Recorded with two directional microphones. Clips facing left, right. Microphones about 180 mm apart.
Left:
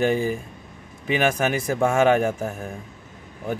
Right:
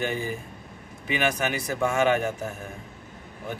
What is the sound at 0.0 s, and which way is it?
Speech, 45° left (ahead or behind).